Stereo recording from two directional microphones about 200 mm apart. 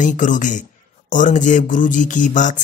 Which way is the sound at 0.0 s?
40° left (ahead or behind).